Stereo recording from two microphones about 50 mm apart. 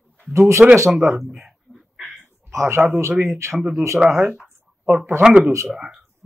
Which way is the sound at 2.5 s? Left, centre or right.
Right.